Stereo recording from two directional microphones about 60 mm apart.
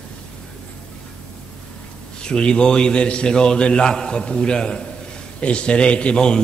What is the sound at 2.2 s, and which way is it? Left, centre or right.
A man's voice, centre.